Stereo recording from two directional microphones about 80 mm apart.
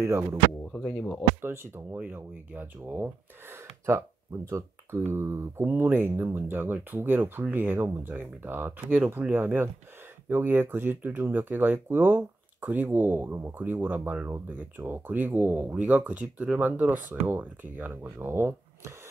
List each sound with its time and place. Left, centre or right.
0.0 s speech: right
1.4 s speech: right
9.3 s speech: right